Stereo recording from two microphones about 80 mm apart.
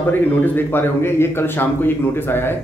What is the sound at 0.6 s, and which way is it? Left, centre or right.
A man's voice, left.